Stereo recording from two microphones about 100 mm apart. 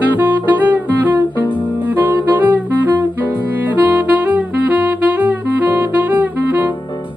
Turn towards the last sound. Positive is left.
turn(degrees=-15)  # may be behind; listen again after turning